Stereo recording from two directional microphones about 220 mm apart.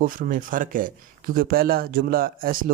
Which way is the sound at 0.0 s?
40° right (ahead or behind).